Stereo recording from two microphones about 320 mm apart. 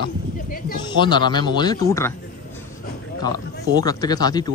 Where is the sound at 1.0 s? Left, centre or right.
Centre.